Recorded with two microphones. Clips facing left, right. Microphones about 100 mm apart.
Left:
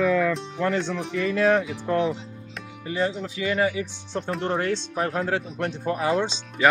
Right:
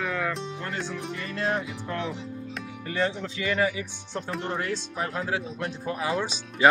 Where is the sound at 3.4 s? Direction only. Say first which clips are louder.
Left 2 dB; 25° left (ahead or behind).